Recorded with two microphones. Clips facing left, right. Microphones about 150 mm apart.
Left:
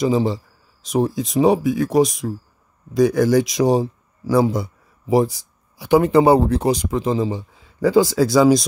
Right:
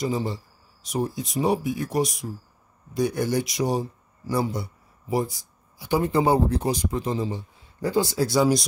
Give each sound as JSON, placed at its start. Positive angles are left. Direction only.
{"t": 0.0, "sound": "speech", "side_deg": 90}